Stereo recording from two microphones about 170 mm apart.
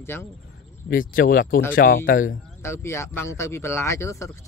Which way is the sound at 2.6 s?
15° left (ahead or behind).